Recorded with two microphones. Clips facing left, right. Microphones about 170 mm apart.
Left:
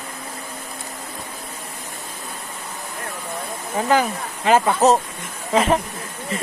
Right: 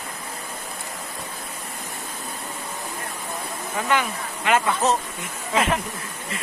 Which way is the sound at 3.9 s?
35° left (ahead or behind).